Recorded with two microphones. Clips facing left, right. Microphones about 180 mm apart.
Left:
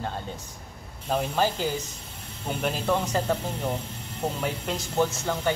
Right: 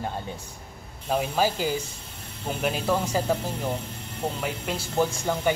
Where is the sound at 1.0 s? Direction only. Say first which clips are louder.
Right 1 dB; 5° right (ahead or behind).